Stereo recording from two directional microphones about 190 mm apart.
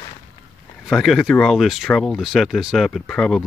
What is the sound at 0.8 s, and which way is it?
Speech, centre (ahead or behind).